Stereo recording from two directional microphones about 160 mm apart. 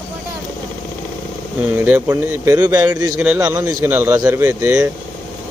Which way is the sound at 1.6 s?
10° right (ahead or behind).